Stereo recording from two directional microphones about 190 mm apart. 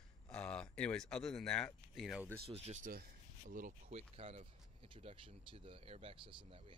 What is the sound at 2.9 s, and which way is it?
Speech, 50° right (ahead or behind).